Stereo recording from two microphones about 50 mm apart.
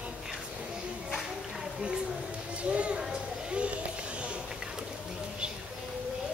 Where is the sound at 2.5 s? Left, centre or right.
Right.